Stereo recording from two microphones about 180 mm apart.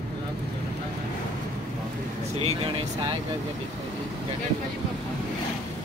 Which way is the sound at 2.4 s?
30° right (ahead or behind).